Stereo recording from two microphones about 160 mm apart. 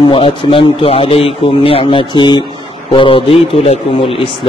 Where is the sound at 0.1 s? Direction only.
35° left (ahead or behind).